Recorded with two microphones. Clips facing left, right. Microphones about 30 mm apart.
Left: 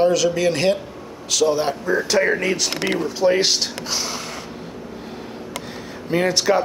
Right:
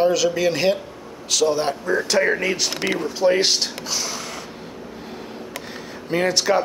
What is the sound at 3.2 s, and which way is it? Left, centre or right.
Speech, centre.